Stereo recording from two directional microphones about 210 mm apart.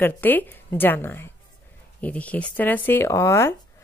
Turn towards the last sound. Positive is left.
turn(degrees=15)  # may be behind; listen again after turning